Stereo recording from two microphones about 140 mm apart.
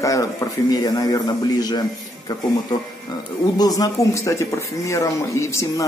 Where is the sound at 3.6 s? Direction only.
25° left (ahead or behind).